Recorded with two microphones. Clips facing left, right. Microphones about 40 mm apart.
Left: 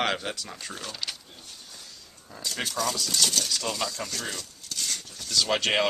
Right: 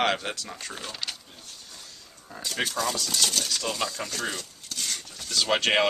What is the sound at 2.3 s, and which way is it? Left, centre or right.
Speech, centre.